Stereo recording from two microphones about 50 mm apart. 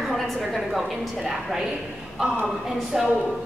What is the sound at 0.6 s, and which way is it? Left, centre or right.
A woman's voice, centre.